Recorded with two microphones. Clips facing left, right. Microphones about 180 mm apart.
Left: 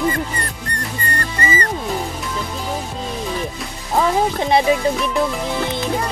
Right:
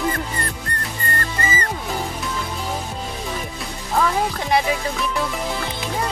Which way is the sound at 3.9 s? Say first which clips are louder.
Left 3 dB; 25° left (ahead or behind).